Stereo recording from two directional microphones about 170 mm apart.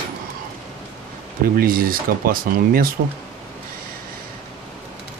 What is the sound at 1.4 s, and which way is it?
Speech, 60° right (ahead or behind).